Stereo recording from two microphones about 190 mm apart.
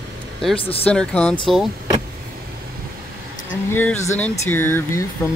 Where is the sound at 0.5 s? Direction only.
30° left (ahead or behind).